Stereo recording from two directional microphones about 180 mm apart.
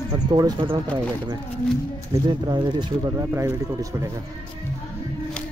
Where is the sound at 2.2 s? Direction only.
25° right (ahead or behind).